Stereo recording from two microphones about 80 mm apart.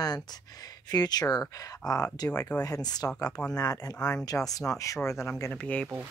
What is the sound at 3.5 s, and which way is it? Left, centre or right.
Speech, left.